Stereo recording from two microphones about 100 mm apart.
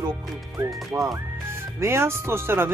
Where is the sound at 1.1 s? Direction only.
25° right (ahead or behind).